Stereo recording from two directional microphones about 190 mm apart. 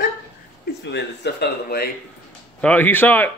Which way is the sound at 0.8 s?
60° left (ahead or behind).